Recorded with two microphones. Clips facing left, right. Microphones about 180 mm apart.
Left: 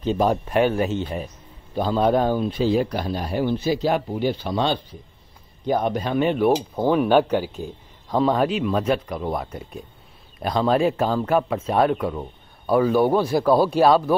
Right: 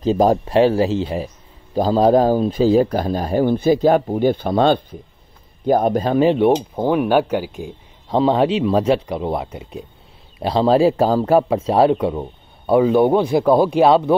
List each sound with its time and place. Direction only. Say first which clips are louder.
0.0 s speech: right 5 dB; 35° right (ahead or behind)
6.7 s speech: right 1 dB; 10° right (ahead or behind)
8.1 s speech: right 4 dB; 25° right (ahead or behind)
10.4 s speech: right 5 dB; 30° right (ahead or behind)